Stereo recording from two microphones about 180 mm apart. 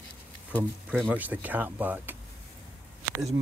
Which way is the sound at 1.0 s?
10° right (ahead or behind).